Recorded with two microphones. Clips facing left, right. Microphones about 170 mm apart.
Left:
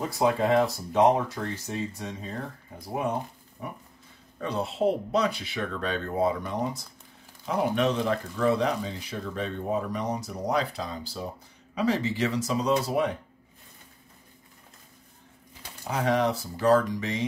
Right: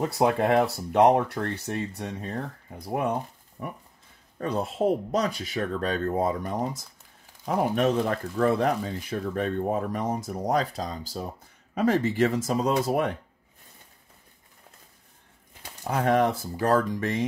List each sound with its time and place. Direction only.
0.2 s speech: 60° right (ahead or behind)
3.6 s a sound: 50° right (ahead or behind)
4.4 s speech: 45° right (ahead or behind)
11.7 s speech: 50° right (ahead or behind)
15.9 s speech: 50° right (ahead or behind)